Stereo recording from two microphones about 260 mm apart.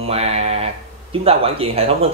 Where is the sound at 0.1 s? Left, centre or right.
Right.